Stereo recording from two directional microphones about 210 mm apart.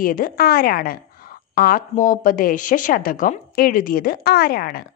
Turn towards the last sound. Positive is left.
turn(degrees=45)  # may be behind; listen again after turning